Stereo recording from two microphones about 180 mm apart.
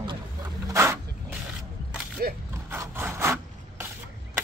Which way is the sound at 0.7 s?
15° right (ahead or behind).